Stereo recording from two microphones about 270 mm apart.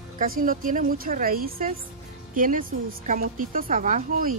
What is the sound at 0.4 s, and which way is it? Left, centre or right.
Speech, right.